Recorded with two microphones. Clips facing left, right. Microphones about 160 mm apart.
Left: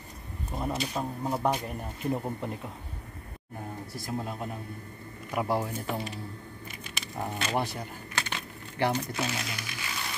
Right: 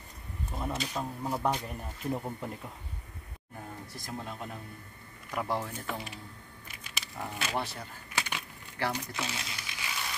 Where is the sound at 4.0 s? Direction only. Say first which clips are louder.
Left 6 dB; 5° left (ahead or behind).